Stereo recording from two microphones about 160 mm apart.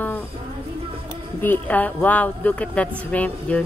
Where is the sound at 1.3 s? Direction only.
10° left (ahead or behind).